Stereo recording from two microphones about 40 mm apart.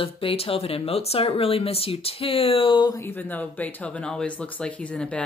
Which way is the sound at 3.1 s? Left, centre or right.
Left.